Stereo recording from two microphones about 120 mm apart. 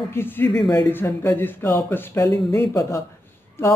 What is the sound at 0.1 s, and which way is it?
Speech, 20° left (ahead or behind).